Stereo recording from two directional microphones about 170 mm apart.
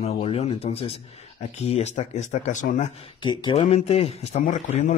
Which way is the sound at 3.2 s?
30° left (ahead or behind).